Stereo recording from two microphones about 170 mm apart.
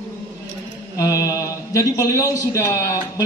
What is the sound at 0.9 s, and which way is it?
A man's voice, 20° left (ahead or behind).